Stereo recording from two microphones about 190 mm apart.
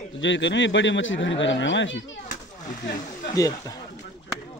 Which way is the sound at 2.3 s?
40° left (ahead or behind).